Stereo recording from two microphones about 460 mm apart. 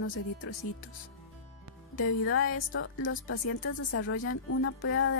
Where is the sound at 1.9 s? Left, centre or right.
Left.